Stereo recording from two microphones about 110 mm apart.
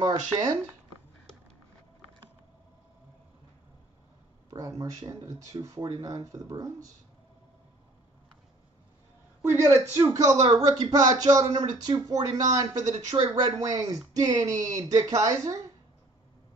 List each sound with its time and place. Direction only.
0.0 s speech: 40° right (ahead or behind)
4.5 s speech: 35° right (ahead or behind)
9.4 s a woman's voice: 20° right (ahead or behind)
12.9 s speech: 75° right (ahead or behind)
13.3 s speech: 35° right (ahead or behind)